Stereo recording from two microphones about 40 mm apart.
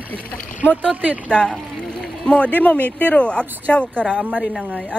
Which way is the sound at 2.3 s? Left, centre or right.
Left.